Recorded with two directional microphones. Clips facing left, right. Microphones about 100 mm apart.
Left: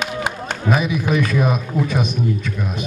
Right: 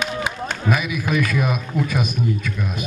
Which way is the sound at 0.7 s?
30° left (ahead or behind).